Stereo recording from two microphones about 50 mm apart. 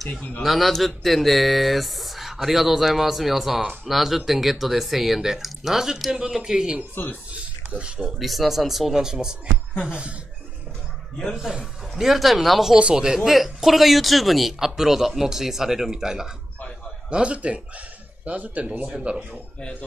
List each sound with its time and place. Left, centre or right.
0.1 s speech: left
0.4 s a man's voice: centre
7.3 s a sound: right
8.0 s speech: centre; by 10.1 s right
11.3 s a man's voice: centre
12.7 s a man's voice: centre
13.2 s speech: centre
17.1 s speech: right